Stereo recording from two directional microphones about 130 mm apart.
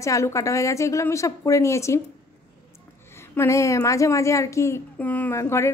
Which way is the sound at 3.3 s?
25° left (ahead or behind).